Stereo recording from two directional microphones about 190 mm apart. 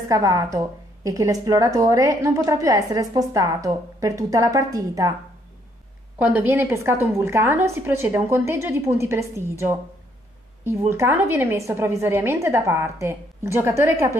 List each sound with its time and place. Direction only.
0.1 s speech: 20° right (ahead or behind)
6.1 s speech: 10° right (ahead or behind)
10.9 s speech: 10° right (ahead or behind)